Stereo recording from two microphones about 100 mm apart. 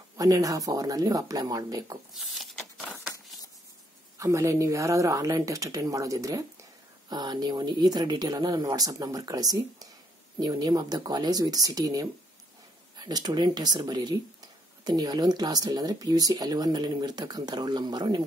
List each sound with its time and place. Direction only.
0.2 s speech: 35° right (ahead or behind)
2.1 s a sound: centre (ahead or behind)
4.2 s speech: 30° right (ahead or behind)
7.1 s speech: 45° right (ahead or behind)